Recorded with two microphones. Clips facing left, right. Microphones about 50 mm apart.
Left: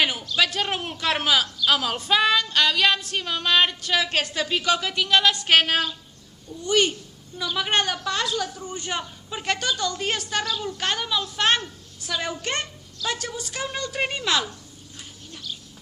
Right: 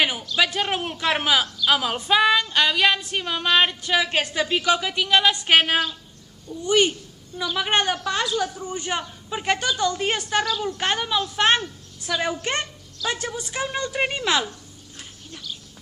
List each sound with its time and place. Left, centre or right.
0.0 s a sound: centre
0.4 s female singing: centre
10.8 s a woman's voice: centre
13.7 s female singing: centre